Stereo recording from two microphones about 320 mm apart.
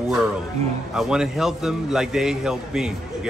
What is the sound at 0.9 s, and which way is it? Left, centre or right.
A man's voice, centre.